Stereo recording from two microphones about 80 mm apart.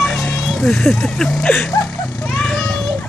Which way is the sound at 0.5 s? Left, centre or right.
Centre.